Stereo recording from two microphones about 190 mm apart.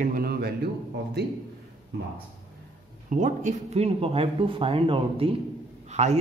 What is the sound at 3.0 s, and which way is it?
A man's voice, 40° right (ahead or behind).